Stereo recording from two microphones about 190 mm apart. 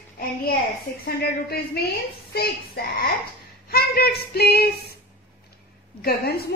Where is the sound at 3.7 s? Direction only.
55° left (ahead or behind).